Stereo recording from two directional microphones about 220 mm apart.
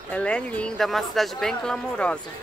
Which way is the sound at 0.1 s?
5° left (ahead or behind).